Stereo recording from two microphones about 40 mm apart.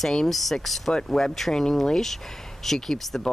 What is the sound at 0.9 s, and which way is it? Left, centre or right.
Speech, centre.